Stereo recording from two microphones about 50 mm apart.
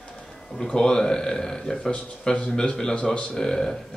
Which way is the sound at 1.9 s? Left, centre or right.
Left.